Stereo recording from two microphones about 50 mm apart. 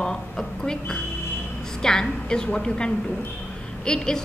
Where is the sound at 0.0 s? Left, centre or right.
Centre.